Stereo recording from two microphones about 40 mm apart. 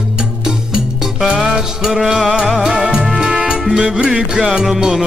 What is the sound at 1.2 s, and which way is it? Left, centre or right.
Music, centre.